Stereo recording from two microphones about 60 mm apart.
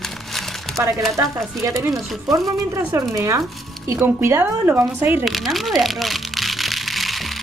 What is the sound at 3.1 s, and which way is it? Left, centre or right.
Speech, right.